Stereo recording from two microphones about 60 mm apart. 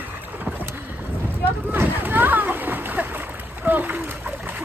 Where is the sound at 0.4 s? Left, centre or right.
Right.